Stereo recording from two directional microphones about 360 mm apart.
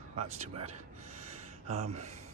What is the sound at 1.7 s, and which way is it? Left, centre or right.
Speech, centre.